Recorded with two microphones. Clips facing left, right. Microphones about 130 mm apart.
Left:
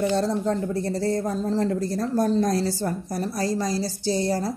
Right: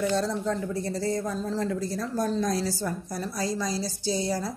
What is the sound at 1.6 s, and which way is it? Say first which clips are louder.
A woman's voice: left 5 dB; 55° left (ahead or behind).